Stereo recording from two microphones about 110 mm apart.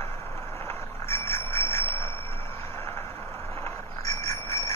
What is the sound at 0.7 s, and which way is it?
Bicycle bell, 25° left (ahead or behind).